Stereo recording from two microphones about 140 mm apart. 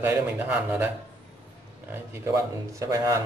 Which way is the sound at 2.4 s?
20° right (ahead or behind).